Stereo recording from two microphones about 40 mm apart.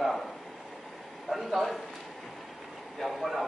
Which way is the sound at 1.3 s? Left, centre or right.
Centre.